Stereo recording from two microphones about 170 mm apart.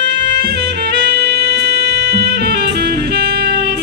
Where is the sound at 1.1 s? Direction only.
70° right (ahead or behind).